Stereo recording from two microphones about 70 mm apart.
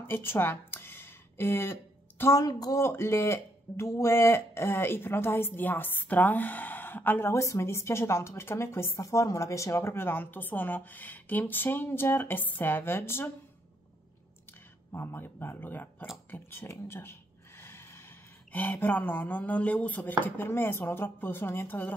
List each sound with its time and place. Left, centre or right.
0.0 s a sound: left
2.3 s a woman's voice: left
2.8 s a woman's voice: left
7.3 s a woman's voice: left
14.9 s a woman's voice: left
16.3 s a sound: left
18.5 s chopping: left
20.2 s a woman's voice: left